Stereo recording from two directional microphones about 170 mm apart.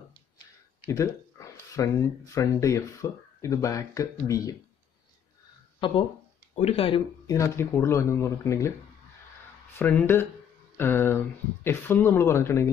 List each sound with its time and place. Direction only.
0.8 s speech: 20° left (ahead or behind)
5.8 s speech: 30° left (ahead or behind)
6.5 s speech: 40° left (ahead or behind)
7.2 s speech: 20° left (ahead or behind)
9.8 s speech: 10° left (ahead or behind)